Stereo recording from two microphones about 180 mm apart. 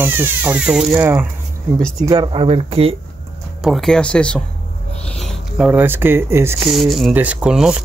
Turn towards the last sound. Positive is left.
turn(degrees=-5)  # may be behind; listen again after turning